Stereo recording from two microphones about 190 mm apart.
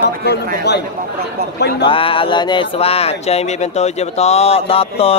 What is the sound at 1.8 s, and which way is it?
Speech, 30° left (ahead or behind).